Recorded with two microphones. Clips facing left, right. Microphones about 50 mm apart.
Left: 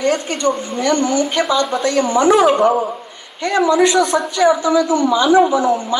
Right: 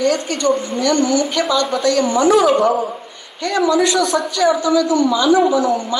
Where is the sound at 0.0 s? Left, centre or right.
Left.